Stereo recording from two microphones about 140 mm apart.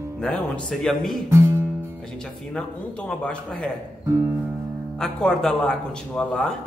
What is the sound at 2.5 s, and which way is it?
A man's voice, 5° left (ahead or behind).